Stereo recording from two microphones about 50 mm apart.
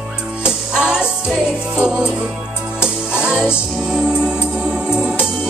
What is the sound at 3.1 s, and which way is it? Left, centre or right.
Music, right.